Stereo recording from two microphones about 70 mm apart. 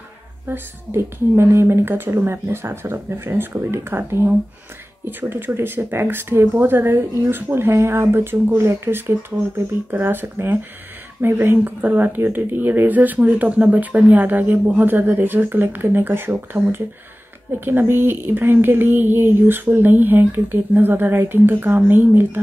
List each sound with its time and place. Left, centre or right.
0.5 s a woman's voice: right
5.3 s a woman's voice: right